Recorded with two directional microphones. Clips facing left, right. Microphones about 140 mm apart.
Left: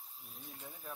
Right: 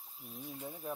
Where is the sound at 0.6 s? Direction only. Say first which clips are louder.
Right 7 dB; 15° right (ahead or behind).